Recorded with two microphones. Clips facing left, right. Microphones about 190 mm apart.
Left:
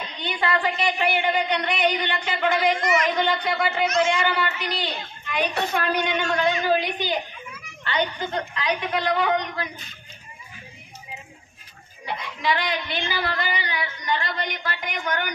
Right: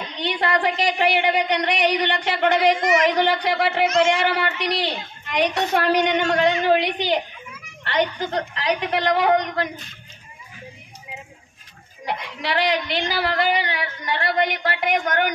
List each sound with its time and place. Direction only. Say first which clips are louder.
0.2 s a man's voice: right 3 dB; 70° right (ahead or behind)
2.8 s a woman's voice: right 4 dB; 20° right (ahead or behind)
3.1 s a man's voice: right 3 dB; 70° right (ahead or behind)
12.1 s a man's voice: even; 80° right